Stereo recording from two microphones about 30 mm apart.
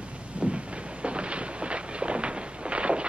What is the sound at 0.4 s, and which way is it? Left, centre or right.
Vehicle, right.